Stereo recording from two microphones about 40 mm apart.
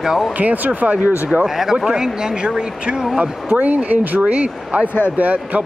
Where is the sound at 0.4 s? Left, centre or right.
Right.